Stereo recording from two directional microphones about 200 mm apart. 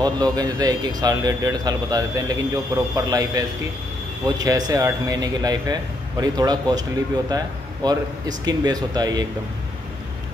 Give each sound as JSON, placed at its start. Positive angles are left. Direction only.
{"t": 0.0, "sound": "a man's voice", "side_deg": -20}